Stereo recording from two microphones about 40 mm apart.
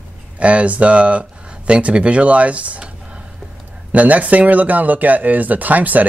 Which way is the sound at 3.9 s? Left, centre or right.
Right.